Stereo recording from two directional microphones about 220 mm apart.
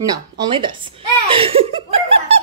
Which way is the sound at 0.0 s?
20° right (ahead or behind).